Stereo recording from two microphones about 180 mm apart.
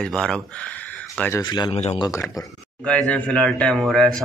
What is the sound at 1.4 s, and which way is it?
Speech, 25° left (ahead or behind).